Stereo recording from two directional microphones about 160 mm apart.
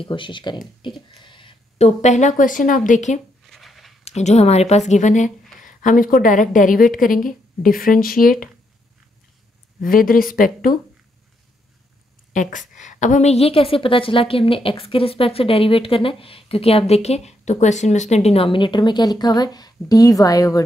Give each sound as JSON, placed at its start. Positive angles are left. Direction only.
{"t": 0.0, "sound": "a woman's voice", "side_deg": 30}
{"t": 1.2, "sound": "a sound", "side_deg": 30}
{"t": 2.0, "sound": "speech", "side_deg": 50}
{"t": 3.4, "sound": "a sound", "side_deg": 0}
{"t": 4.0, "sound": "a woman's voice", "side_deg": 45}
{"t": 9.8, "sound": "a woman's voice", "side_deg": 60}
{"t": 12.3, "sound": "a woman's voice", "side_deg": 55}